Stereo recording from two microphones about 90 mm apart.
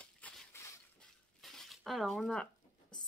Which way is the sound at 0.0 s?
15° left (ahead or behind).